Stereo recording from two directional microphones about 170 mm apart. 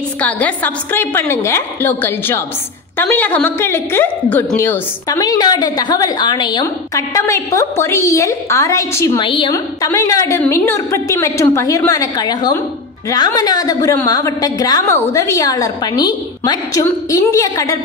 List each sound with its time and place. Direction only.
0.2 s a woman's voice: 10° left (ahead or behind)
9.2 s a woman's voice: 30° left (ahead or behind)